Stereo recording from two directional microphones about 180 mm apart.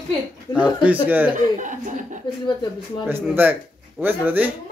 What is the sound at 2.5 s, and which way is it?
Speech, 25° left (ahead or behind).